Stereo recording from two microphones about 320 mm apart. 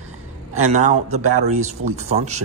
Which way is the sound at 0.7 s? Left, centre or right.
Right.